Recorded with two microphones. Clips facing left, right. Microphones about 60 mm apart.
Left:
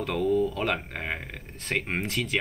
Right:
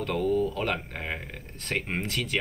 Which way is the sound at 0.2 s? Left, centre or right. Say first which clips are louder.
Left 2 dB; right.